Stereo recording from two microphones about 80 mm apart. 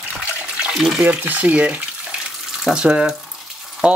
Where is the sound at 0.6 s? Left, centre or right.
Centre.